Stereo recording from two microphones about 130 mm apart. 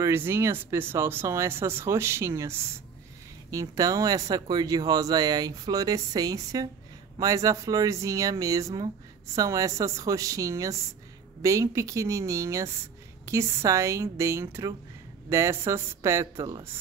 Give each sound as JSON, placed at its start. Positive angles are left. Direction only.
{"t": 0.0, "sound": "speech", "side_deg": -20}